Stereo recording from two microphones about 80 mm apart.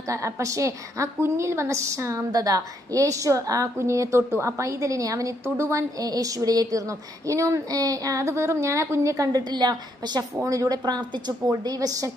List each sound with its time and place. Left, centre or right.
0.1 s a woman's voice: right
5.9 s speech: right
9.4 s a woman's voice: right
10.4 s a woman's voice: right